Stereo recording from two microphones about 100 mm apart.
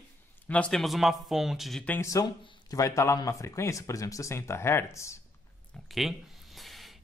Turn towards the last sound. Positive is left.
turn(degrees=0)  # may be behind; listen again after turning